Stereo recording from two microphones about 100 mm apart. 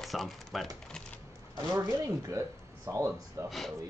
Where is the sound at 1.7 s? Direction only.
30° right (ahead or behind).